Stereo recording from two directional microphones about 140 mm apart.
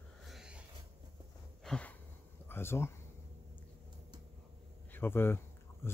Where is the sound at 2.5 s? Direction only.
15° left (ahead or behind).